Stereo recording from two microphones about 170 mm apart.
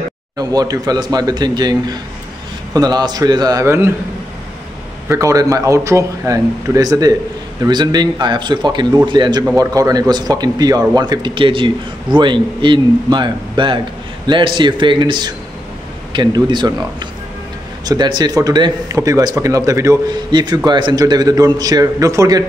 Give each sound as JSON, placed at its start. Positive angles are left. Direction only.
{"t": 0.4, "sound": "speech", "side_deg": -20}
{"t": 5.0, "sound": "speech", "side_deg": -15}
{"t": 16.4, "sound": "speech", "side_deg": -25}